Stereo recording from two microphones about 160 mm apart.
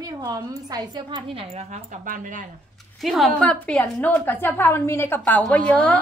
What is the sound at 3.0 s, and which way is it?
A woman's voice, centre (ahead or behind).